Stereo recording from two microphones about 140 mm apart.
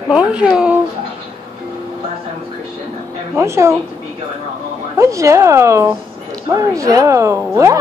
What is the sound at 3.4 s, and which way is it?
Speech, 20° right (ahead or behind).